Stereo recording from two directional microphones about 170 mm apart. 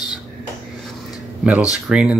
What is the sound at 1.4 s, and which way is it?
Speech, 5° right (ahead or behind).